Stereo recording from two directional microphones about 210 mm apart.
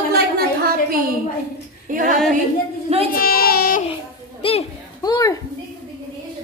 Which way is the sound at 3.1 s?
45° left (ahead or behind).